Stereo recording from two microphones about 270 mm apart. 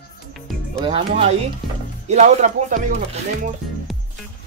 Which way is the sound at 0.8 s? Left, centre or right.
Centre.